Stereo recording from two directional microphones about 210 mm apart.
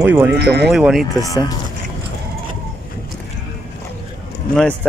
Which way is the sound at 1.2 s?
15° left (ahead or behind).